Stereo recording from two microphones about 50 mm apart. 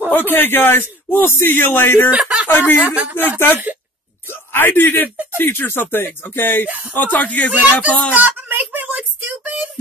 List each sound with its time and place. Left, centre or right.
0.1 s a man's voice: left
2.0 s speech: right
2.4 s speech: left
2.8 s speech: right
3.2 s a man's voice: left
8.1 s a sound: right